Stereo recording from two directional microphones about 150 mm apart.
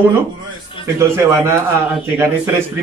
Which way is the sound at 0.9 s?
20° right (ahead or behind).